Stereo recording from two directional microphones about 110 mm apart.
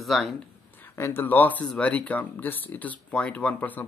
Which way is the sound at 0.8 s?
20° left (ahead or behind).